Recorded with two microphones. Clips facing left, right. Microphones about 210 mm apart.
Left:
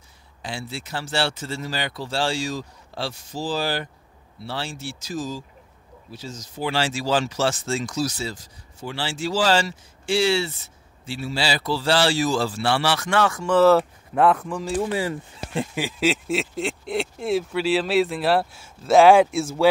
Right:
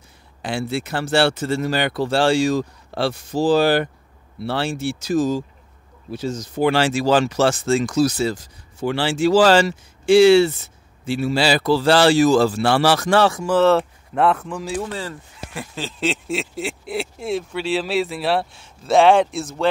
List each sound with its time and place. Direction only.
0.4 s speech: 65° right (ahead or behind); by 13.4 s 30° right (ahead or behind)
13.4 s speech: centre (ahead or behind)
14.8 s speech: 15° left (ahead or behind)